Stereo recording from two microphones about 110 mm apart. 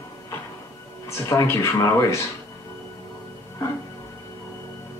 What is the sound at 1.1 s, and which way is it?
Speech, 25° left (ahead or behind).